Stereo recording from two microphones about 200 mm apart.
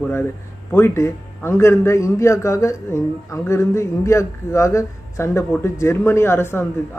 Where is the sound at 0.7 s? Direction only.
10° left (ahead or behind).